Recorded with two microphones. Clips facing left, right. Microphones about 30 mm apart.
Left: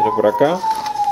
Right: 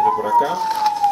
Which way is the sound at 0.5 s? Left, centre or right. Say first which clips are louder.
Even; centre.